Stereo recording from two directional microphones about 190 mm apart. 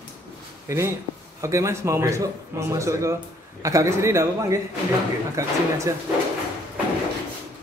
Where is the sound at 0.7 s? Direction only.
15° right (ahead or behind).